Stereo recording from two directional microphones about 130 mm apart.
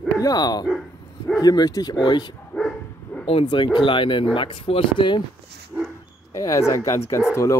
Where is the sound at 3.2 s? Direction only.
40° left (ahead or behind).